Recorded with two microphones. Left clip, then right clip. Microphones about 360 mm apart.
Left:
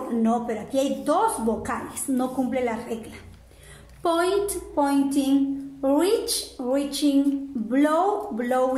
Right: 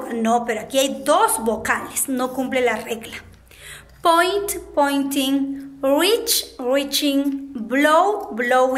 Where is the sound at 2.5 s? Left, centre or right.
Right.